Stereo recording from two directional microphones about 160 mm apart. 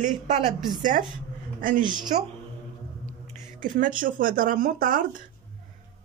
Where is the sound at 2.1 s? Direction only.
45° right (ahead or behind).